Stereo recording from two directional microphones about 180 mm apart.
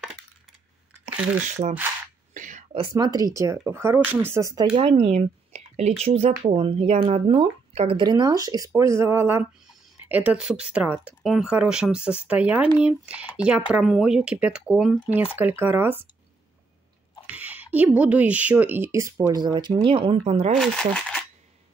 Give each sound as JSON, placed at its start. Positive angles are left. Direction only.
{"t": 1.6, "sound": "speech", "side_deg": -35}
{"t": 2.3, "sound": "whispering", "side_deg": -45}
{"t": 2.7, "sound": "speech", "side_deg": -25}
{"t": 4.7, "sound": "speech", "side_deg": -30}
{"t": 17.3, "sound": "a sound", "side_deg": -10}
{"t": 17.7, "sound": "speech", "side_deg": -10}
{"t": 20.5, "sound": "speech", "side_deg": 5}